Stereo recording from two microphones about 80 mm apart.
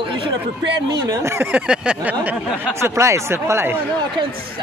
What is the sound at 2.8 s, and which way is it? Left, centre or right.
Speech, right.